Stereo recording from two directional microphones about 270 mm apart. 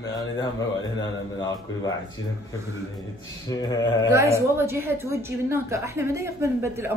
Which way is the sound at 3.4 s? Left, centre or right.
Centre.